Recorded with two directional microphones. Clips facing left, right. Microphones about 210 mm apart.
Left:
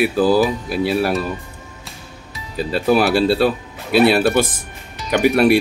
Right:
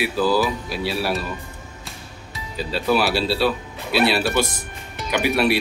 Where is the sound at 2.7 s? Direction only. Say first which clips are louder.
Left 5 dB; 50° left (ahead or behind).